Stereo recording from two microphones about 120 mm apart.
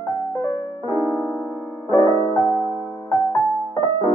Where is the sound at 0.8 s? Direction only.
30° right (ahead or behind).